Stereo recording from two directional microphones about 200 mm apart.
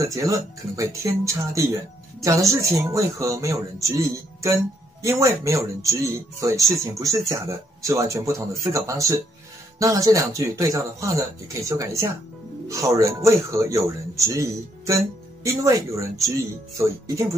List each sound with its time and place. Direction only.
0.0 s speech: 15° right (ahead or behind)